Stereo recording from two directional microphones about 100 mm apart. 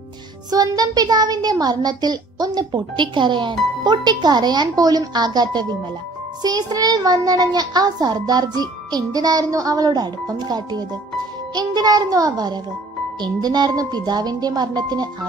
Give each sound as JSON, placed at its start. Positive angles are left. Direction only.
{"t": 0.5, "sound": "a child's voice", "side_deg": -40}